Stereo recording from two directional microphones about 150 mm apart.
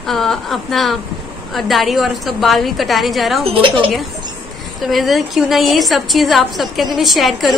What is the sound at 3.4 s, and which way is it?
Speech, 35° right (ahead or behind).